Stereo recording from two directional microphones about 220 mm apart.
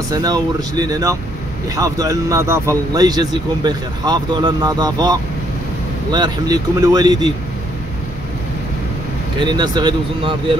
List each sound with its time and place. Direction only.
0.1 s speech: 15° right (ahead or behind)
6.1 s speech: 20° right (ahead or behind)
9.4 s speech: 20° right (ahead or behind)